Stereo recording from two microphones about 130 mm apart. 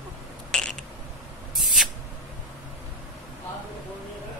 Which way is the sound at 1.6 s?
Centre (ahead or behind).